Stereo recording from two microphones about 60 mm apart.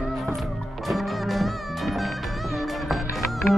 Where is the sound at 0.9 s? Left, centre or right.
Centre.